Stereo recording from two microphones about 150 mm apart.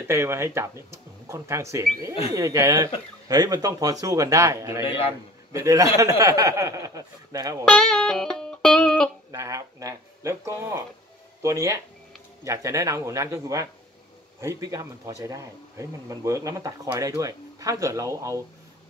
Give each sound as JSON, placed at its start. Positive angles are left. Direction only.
{"t": 0.1, "sound": "speech", "side_deg": -20}
{"t": 7.6, "sound": "music", "side_deg": 5}
{"t": 9.3, "sound": "speech", "side_deg": -20}